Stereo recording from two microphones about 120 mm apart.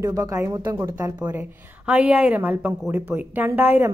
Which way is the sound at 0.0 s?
25° right (ahead or behind).